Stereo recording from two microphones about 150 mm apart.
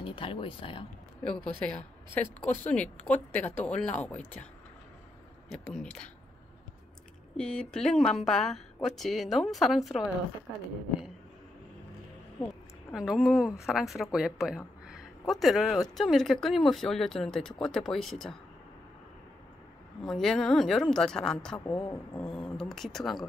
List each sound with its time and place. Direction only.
0.0 s speech: 35° left (ahead or behind)
1.2 s speech: 5° left (ahead or behind)
5.5 s speech: 5° left (ahead or behind)
7.3 s speech: 5° left (ahead or behind)
12.9 s speech: 5° right (ahead or behind)
20.0 s speech: 5° left (ahead or behind)